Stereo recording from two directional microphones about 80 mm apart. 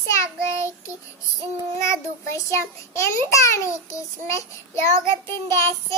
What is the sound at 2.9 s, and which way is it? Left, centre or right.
A child's voice, left.